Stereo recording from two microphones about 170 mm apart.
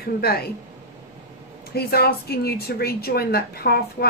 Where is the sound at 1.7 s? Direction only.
65° left (ahead or behind).